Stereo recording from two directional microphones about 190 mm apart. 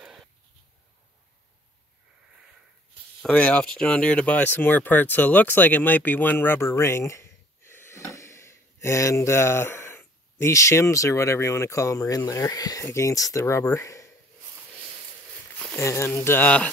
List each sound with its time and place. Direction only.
0.0 s a sound: centre (ahead or behind)
3.2 s speech: 5° left (ahead or behind)
15.5 s speech: 10° left (ahead or behind)